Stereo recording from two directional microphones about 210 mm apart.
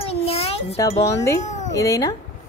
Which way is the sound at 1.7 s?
15° left (ahead or behind).